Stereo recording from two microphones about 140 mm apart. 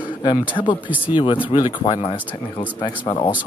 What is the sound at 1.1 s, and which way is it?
Speech, 35° left (ahead or behind).